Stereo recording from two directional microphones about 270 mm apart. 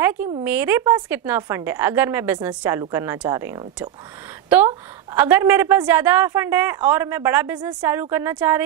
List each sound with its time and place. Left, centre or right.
0.0 s a woman's voice: centre